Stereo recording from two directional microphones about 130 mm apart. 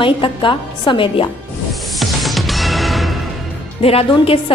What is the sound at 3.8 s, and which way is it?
Speech, 50° left (ahead or behind).